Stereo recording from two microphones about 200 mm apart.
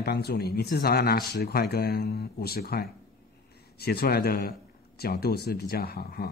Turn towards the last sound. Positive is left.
turn(degrees=50)  # may be behind; listen again after turning